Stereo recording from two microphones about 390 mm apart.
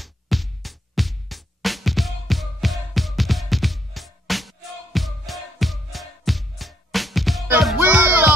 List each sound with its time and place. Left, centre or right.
0.0 s music: centre